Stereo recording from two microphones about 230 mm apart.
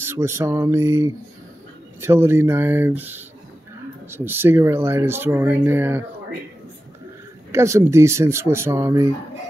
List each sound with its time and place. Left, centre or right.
0.0 s speech: centre
7.5 s speech: centre